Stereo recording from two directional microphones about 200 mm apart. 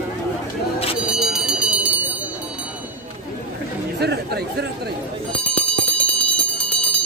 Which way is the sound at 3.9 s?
55° right (ahead or behind).